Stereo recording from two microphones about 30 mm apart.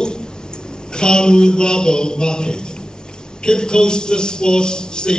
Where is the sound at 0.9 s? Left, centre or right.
Left.